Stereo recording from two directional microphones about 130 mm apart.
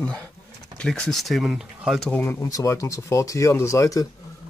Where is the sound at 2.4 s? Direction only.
25° left (ahead or behind).